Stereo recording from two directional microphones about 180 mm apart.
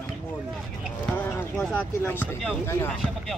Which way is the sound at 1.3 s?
15° left (ahead or behind).